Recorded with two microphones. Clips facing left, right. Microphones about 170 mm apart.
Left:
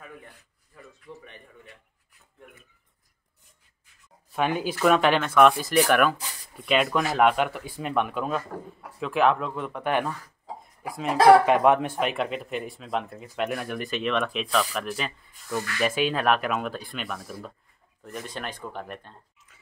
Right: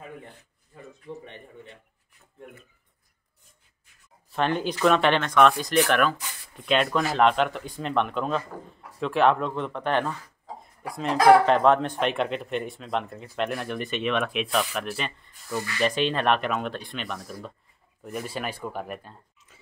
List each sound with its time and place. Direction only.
0.0 s a sound: 25° right (ahead or behind)
4.3 s speech: 10° left (ahead or behind)
15.5 s speech: 10° right (ahead or behind)
15.8 s speech: 5° left (ahead or behind)